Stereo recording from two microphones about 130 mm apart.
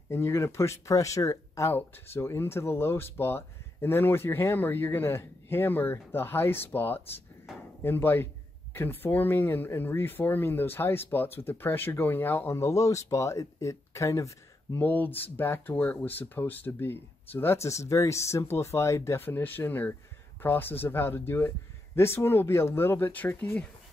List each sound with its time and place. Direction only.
0.1 s speech: 20° left (ahead or behind)
7.5 s drawer open or close: centre (ahead or behind)
7.8 s speech: 15° left (ahead or behind)